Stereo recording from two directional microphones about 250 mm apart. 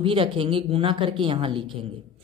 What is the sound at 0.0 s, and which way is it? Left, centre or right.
Speech, right.